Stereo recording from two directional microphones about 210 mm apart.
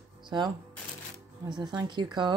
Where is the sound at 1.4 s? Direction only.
20° right (ahead or behind).